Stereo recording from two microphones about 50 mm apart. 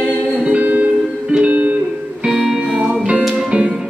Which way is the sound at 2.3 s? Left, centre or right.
Centre.